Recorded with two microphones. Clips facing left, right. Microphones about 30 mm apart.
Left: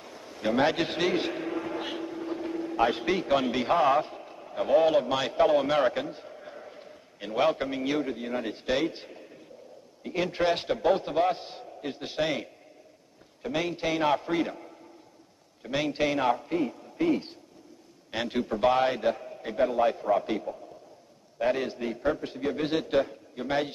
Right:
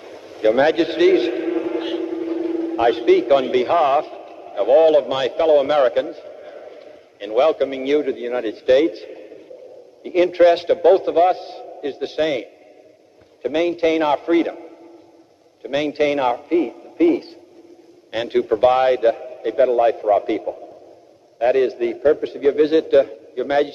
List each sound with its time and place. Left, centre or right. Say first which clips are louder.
0.0 s a man's voice: right 13 dB; centre
15.6 s a man's voice: right 8 dB; centre